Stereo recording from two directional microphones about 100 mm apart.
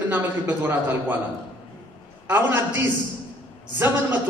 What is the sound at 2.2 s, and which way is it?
A man's voice, 20° right (ahead or behind).